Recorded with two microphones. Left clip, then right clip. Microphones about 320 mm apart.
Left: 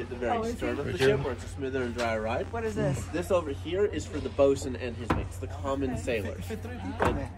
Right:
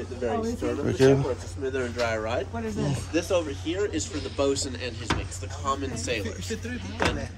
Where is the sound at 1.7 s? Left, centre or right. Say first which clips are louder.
Right 2 dB; left.